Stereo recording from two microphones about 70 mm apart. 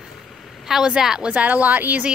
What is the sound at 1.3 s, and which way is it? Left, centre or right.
Speech, centre.